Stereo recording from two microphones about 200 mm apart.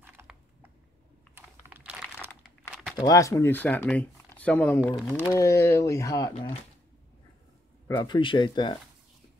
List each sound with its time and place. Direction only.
0.0 s a sound: 10° right (ahead or behind)
1.3 s computer keyboard: 10° right (ahead or behind)
2.2 s crumpling: 10° left (ahead or behind)
3.0 s speech: 15° left (ahead or behind)
7.9 s speech: 20° left (ahead or behind)